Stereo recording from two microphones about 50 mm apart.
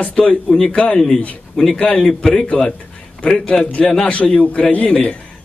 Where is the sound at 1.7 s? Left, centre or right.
Left.